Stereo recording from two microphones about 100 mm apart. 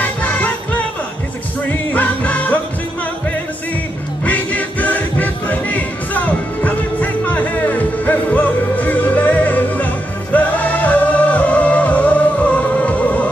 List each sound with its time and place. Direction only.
0.0 s music: 15° left (ahead or behind)
1.7 s music: 15° left (ahead or behind)
4.2 s music: 15° left (ahead or behind)